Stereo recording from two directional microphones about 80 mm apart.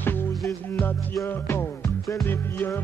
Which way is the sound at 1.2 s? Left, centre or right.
Left.